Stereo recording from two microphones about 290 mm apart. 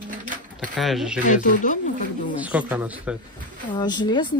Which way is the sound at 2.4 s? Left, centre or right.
Centre.